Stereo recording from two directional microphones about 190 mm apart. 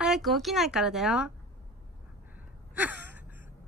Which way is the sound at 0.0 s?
Centre (ahead or behind).